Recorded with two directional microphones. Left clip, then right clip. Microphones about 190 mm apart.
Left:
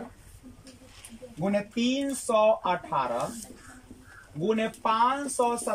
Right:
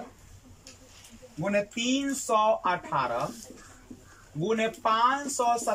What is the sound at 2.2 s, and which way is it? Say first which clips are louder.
Speech: left 1 dB; 10° left (ahead or behind).